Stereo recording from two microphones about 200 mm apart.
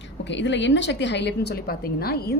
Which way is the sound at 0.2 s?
65° left (ahead or behind).